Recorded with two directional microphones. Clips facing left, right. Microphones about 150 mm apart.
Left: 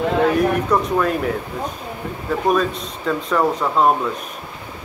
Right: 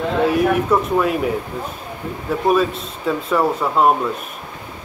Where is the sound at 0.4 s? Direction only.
5° right (ahead or behind).